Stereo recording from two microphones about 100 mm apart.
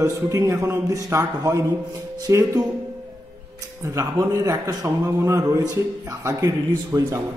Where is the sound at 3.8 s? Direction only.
35° right (ahead or behind).